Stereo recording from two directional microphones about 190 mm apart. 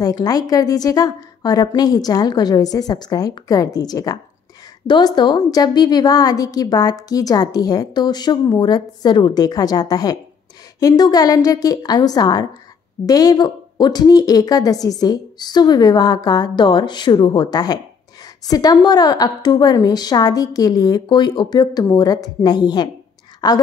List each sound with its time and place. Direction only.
0.0 s a woman's voice: 20° left (ahead or behind)